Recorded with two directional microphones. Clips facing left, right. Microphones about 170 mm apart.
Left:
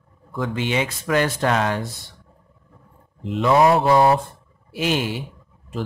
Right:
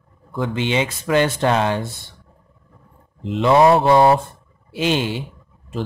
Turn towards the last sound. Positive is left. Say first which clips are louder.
# right 2 dB
turn(degrees=-25)  # may be behind; listen again after turning